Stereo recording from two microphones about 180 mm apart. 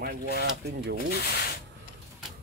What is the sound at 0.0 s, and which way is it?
Speech, 65° right (ahead or behind).